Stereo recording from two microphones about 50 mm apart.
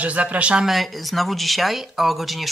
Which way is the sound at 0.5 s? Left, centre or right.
Centre.